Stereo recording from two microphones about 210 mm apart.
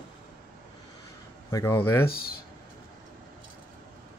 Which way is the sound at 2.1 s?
45° left (ahead or behind).